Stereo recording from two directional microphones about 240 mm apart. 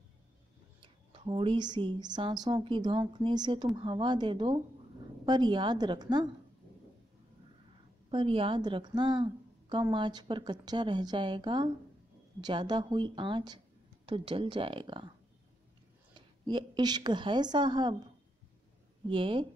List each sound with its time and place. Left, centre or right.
1.1 s a woman's voice: right
8.1 s a woman's voice: right
16.2 s a woman's voice: centre
19.0 s a woman's voice: right